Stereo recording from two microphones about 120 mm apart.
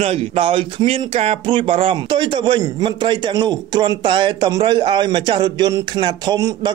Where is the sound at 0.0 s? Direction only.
50° right (ahead or behind).